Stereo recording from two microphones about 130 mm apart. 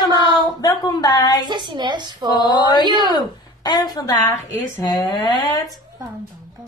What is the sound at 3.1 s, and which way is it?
Speech, 30° left (ahead or behind).